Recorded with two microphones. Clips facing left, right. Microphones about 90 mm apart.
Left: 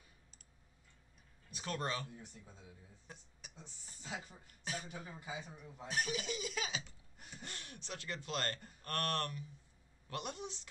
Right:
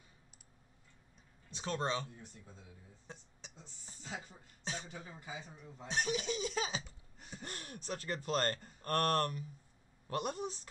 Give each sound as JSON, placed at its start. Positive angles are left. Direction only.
{"t": 1.5, "sound": "speech", "side_deg": -25}
{"t": 2.1, "sound": "a man's voice", "side_deg": 0}
{"t": 3.1, "sound": "a sound", "side_deg": -25}
{"t": 4.0, "sound": "a man's voice", "side_deg": 5}
{"t": 5.9, "sound": "speech", "side_deg": -25}
{"t": 7.4, "sound": "speech", "side_deg": -40}